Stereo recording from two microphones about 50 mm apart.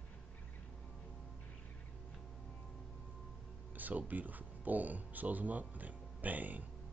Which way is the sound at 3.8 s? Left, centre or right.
Right.